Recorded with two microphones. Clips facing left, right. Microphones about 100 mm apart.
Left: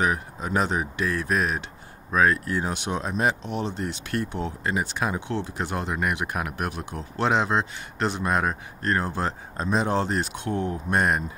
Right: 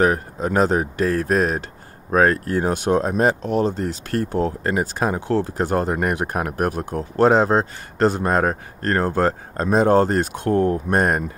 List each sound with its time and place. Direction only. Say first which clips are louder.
0.0 s speech: right 7 dB; 50° right (ahead or behind)